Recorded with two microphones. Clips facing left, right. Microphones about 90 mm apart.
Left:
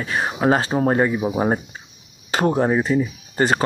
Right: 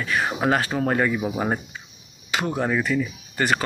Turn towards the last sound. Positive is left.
turn(degrees=30)  # may be behind; listen again after turning